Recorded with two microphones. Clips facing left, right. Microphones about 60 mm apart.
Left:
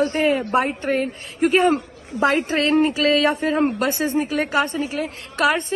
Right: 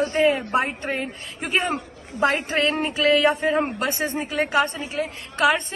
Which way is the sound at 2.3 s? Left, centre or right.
Right.